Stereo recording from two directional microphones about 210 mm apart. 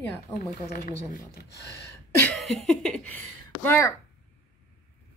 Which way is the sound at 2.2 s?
5° left (ahead or behind).